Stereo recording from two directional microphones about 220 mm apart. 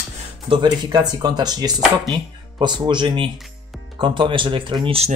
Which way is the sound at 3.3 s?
Centre (ahead or behind).